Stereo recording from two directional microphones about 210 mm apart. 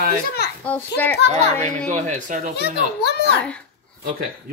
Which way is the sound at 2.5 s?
50° left (ahead or behind).